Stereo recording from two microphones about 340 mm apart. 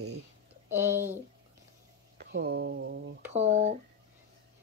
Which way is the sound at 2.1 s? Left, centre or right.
Right.